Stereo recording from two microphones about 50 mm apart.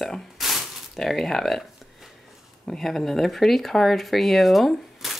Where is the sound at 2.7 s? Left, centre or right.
Centre.